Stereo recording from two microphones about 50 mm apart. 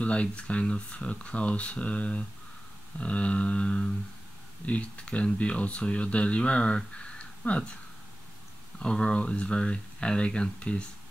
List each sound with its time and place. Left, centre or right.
0.0 s speech: left
8.7 s speech: centre